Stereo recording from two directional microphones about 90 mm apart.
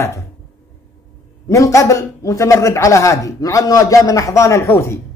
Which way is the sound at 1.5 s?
35° left (ahead or behind).